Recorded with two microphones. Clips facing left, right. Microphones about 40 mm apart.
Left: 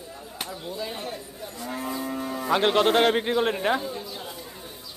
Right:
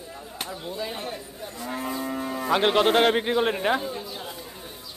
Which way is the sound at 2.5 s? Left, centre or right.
Centre.